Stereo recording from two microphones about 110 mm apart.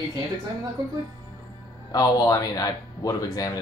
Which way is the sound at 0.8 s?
40° right (ahead or behind).